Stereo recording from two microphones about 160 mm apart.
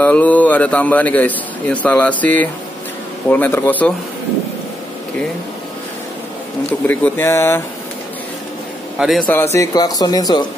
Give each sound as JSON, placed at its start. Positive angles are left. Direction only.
{"t": 0.0, "sound": "a man's voice", "side_deg": 10}
{"t": 6.9, "sound": "a man's voice", "side_deg": 15}
{"t": 9.0, "sound": "a man's voice", "side_deg": -5}
{"t": 9.3, "sound": "speech", "side_deg": 15}